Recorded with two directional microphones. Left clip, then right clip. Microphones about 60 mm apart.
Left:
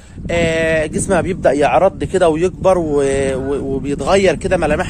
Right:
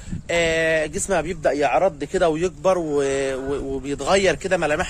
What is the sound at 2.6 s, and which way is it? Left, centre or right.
Speech, left.